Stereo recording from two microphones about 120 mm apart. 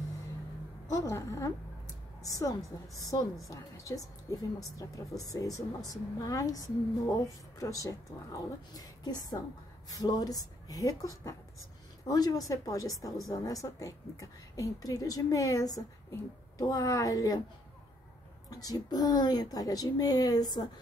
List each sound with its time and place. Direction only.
0.8 s a woman's voice: 25° left (ahead or behind)
18.5 s speech: 30° left (ahead or behind)